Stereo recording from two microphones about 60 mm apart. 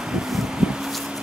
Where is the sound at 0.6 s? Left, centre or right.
Centre.